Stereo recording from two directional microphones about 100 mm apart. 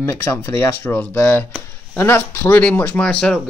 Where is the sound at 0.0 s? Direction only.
25° left (ahead or behind).